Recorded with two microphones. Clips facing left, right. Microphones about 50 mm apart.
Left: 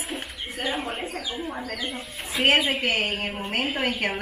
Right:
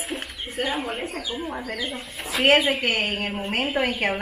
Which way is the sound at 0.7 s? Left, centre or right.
Centre.